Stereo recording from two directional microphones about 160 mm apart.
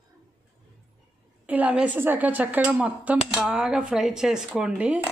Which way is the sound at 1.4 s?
10° right (ahead or behind).